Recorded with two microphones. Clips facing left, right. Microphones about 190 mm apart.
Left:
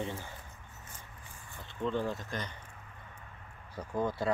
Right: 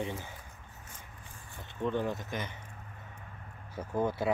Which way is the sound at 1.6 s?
15° right (ahead or behind).